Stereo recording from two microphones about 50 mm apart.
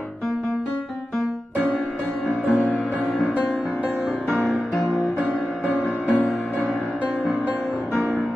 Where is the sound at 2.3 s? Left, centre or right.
Left.